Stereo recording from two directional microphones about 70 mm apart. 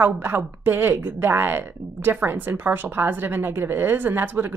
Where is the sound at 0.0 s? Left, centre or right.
Right.